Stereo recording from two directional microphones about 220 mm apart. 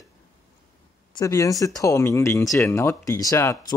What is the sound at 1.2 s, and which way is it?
Speech, 15° left (ahead or behind).